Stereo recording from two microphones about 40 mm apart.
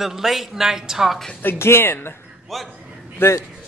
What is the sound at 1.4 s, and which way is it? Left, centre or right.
Speech, left.